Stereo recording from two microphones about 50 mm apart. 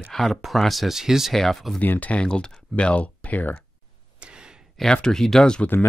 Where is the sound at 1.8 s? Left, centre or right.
Left.